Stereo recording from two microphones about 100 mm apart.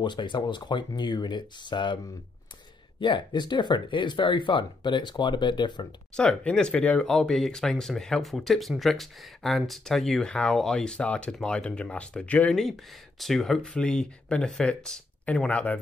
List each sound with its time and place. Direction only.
0.0 s speech: 50° left (ahead or behind)
3.0 s speech: 50° left (ahead or behind)
6.1 s speech: 10° left (ahead or behind)